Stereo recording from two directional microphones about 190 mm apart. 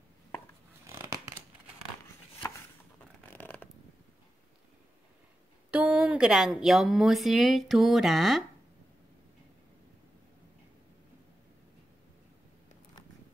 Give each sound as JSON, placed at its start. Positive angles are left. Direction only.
{"t": 0.8, "sound": "scissors", "side_deg": -15}
{"t": 3.3, "sound": "a sound", "side_deg": 10}
{"t": 5.7, "sound": "speech", "side_deg": -10}